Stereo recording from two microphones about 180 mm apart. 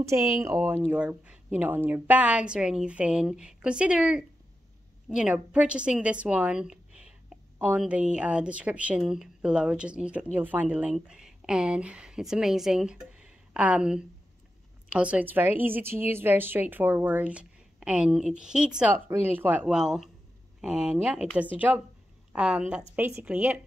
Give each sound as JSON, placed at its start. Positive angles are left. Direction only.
{"t": 0.0, "sound": "a woman's voice", "side_deg": -15}